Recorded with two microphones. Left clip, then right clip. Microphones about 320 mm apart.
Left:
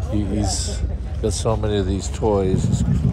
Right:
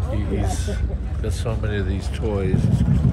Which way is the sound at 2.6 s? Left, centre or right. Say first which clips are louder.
Even; left.